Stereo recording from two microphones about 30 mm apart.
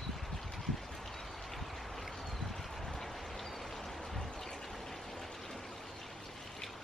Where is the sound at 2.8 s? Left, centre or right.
Centre.